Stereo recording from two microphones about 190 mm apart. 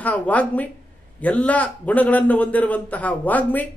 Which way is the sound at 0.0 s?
10° left (ahead or behind).